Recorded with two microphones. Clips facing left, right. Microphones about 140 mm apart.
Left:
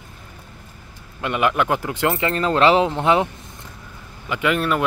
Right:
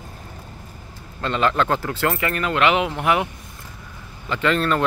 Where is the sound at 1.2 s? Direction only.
15° left (ahead or behind).